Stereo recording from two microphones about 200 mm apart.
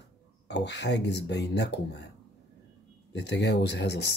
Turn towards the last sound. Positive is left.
turn(degrees=55)  # may be behind; listen again after turning